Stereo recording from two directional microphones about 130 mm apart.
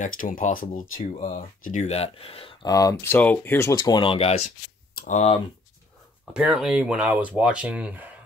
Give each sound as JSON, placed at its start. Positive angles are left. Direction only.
{"t": 0.0, "sound": "speech", "side_deg": 90}
{"t": 1.6, "sound": "speech", "side_deg": 70}
{"t": 2.6, "sound": "speech", "side_deg": 25}
{"t": 3.7, "sound": "speech", "side_deg": 35}
{"t": 4.1, "sound": "speech", "side_deg": 50}
{"t": 4.9, "sound": "speech", "side_deg": 70}
{"t": 6.3, "sound": "speech", "side_deg": -5}